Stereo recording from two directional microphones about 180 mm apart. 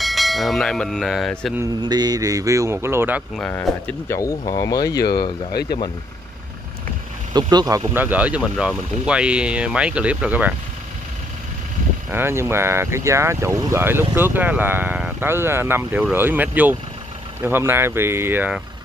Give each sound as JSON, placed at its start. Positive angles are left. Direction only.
{"t": 0.0, "sound": "bell", "side_deg": 0}
{"t": 1.6, "sound": "speech", "side_deg": -20}
{"t": 3.3, "sound": "speech", "side_deg": 5}
{"t": 5.5, "sound": "speech", "side_deg": 60}
{"t": 7.3, "sound": "speech", "side_deg": -20}
{"t": 12.1, "sound": "speech", "side_deg": -15}